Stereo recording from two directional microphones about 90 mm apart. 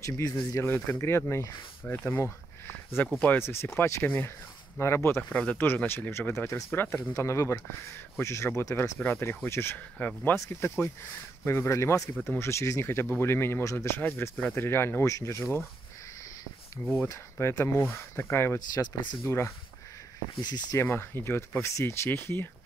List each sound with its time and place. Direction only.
0.0 s speech: 35° left (ahead or behind)
0.6 s speech: 25° left (ahead or behind)
5.3 s speech: 15° left (ahead or behind)
7.2 s speech: 35° left (ahead or behind)
9.9 s speech: 15° left (ahead or behind)
10.3 s speech: 25° left (ahead or behind)
17.1 s speech: 30° left (ahead or behind)
18.7 s speech: 50° left (ahead or behind)
19.2 s speech: 30° left (ahead or behind)
20.7 s speech: 25° left (ahead or behind)